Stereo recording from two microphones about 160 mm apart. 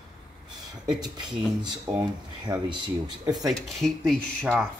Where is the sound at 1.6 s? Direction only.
25° right (ahead or behind).